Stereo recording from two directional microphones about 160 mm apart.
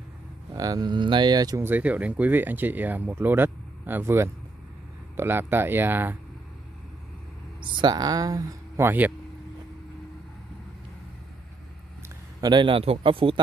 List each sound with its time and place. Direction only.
0.5 s speech: 25° right (ahead or behind)
1.7 s speech: 10° right (ahead or behind)
7.6 s speech: 30° right (ahead or behind); by 9.1 s 10° right (ahead or behind)
12.4 s speech: 30° right (ahead or behind)